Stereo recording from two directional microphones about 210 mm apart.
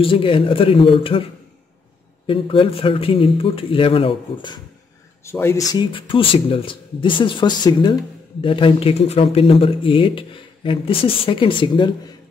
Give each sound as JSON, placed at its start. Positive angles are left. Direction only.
{"t": 0.0, "sound": "speech", "side_deg": 25}
{"t": 2.2, "sound": "speech", "side_deg": 25}
{"t": 5.2, "sound": "speech", "side_deg": 10}